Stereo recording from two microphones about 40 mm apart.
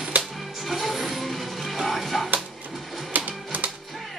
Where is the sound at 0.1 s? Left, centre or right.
Right.